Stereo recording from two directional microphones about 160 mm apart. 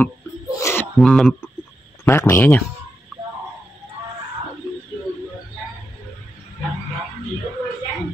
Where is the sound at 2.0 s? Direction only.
15° left (ahead or behind).